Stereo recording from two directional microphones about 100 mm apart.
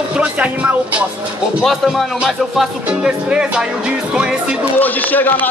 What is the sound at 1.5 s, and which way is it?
Speech, centre (ahead or behind).